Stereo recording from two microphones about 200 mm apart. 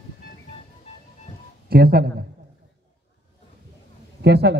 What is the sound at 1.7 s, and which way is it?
Speech, 50° right (ahead or behind).